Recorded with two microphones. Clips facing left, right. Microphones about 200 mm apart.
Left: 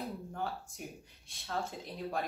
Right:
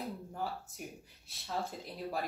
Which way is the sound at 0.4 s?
5° right (ahead or behind).